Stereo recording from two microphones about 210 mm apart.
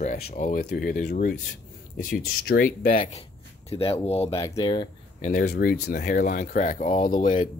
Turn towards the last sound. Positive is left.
turn(degrees=35)  # may be behind; listen again after turning